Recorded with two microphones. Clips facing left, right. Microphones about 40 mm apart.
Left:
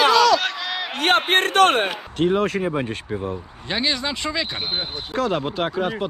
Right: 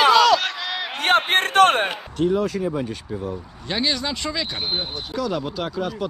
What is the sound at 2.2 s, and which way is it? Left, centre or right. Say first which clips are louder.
Speech: left 1 dB; left.